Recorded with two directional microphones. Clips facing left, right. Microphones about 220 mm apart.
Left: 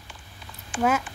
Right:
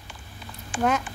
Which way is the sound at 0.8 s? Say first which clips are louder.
Left 1 dB; 5° left (ahead or behind).